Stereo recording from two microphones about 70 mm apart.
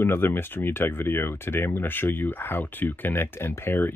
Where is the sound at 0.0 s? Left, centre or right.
Left.